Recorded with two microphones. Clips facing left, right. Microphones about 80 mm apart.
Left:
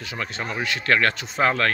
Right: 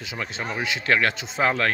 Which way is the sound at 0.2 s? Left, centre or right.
Centre.